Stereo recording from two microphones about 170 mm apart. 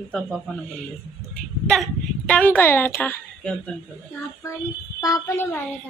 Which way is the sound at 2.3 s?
10° left (ahead or behind).